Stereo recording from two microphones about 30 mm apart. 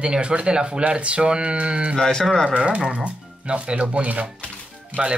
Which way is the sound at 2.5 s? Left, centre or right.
Right.